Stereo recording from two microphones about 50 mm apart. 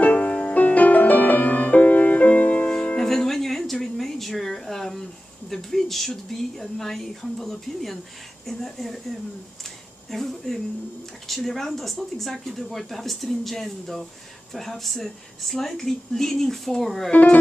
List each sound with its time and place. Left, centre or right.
0.0 s music: left
2.7 s music: centre
3.1 s a sound: centre
5.5 s speech: centre
10.1 s speech: centre
17.1 s speech: left